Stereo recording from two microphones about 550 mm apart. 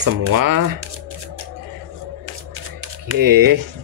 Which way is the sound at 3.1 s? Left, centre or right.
Right.